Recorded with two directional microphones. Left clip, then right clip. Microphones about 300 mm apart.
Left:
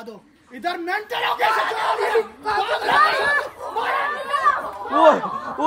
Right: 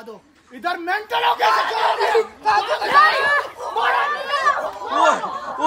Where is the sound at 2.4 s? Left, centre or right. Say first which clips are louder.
Right 3 dB; right.